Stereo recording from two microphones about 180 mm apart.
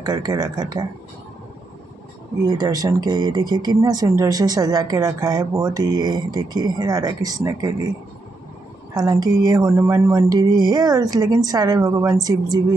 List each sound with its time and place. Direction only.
0.0 s speech: 20° right (ahead or behind)
2.4 s speech: 20° right (ahead or behind)
8.9 s speech: 20° right (ahead or behind)